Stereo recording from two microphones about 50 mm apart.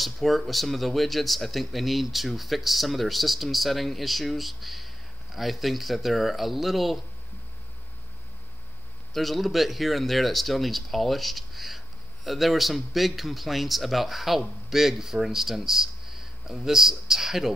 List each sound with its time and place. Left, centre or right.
0.0 s speech: centre
9.1 s speech: centre